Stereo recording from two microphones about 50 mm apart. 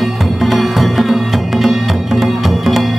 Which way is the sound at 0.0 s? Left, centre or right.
Centre.